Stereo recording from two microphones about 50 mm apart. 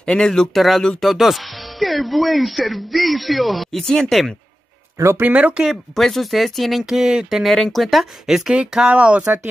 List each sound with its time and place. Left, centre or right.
0.0 s speech: centre
0.6 s speech: centre
4.9 s speech: right
5.2 s speech: right
5.9 s speech: centre
6.8 s speech: centre
7.4 s speech: centre
8.5 s speech: centre